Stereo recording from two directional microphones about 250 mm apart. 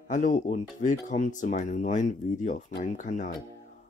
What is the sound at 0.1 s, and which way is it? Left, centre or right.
Speech, left.